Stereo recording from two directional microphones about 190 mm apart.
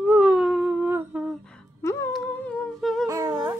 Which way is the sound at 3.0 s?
15° right (ahead or behind).